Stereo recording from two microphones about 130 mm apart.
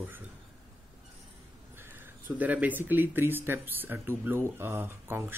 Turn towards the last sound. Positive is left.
turn(degrees=-15)  # may be behind; listen again after turning